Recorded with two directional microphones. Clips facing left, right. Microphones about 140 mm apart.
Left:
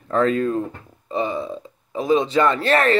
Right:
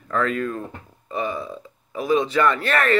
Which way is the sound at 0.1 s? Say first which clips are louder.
Left 5 dB; 30° left (ahead or behind).